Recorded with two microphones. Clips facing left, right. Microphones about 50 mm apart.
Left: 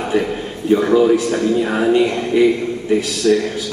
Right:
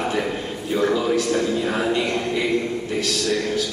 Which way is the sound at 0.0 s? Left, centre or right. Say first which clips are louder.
Left 5 dB; centre.